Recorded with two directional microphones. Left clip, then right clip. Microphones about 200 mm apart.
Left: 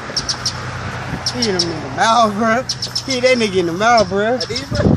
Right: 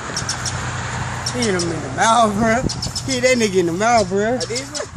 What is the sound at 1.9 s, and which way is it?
Speech, 5° right (ahead or behind).